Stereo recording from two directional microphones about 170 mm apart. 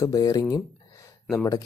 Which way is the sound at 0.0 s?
20° left (ahead or behind).